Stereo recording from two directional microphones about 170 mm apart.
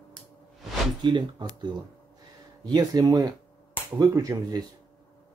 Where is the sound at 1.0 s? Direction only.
25° right (ahead or behind).